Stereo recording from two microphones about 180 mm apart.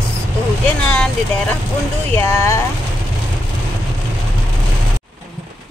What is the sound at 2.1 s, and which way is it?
Speech, 15° left (ahead or behind).